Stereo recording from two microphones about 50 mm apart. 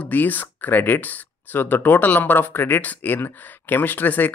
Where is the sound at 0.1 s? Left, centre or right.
Left.